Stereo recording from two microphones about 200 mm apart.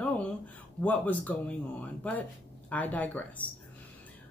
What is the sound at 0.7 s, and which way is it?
Speech, 5° left (ahead or behind).